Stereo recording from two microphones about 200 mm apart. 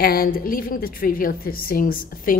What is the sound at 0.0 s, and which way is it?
A woman's voice, 50° left (ahead or behind).